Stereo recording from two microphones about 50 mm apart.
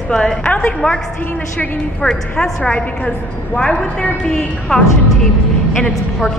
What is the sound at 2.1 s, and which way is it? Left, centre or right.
A woman's voice, centre.